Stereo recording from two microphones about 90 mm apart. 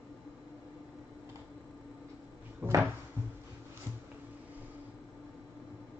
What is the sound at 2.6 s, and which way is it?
Cupboard open or close, 20° right (ahead or behind).